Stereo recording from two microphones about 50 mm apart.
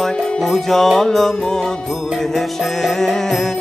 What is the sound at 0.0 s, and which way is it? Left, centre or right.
Music, centre.